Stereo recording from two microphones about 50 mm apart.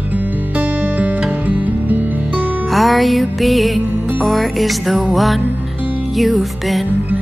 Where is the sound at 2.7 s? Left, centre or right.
Centre.